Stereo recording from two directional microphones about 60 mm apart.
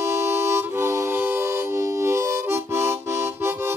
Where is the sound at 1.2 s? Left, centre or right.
Right.